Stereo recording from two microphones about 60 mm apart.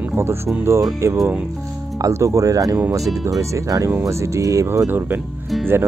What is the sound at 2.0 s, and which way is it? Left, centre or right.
Speech, right.